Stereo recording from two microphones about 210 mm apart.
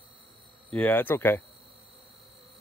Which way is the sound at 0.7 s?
5° left (ahead or behind).